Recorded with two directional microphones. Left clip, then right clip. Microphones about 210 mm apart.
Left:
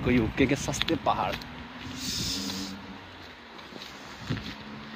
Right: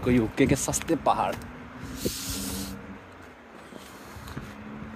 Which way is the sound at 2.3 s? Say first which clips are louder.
Left 2 dB; 45° right (ahead or behind).